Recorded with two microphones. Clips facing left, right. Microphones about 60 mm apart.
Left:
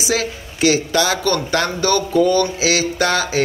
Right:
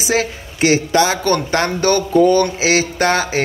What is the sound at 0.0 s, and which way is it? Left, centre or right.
A man's voice, right.